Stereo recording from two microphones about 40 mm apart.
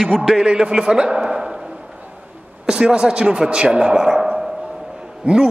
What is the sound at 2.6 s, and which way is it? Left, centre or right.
A man's voice, right.